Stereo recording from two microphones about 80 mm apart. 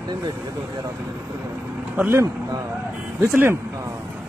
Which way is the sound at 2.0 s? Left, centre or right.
Right.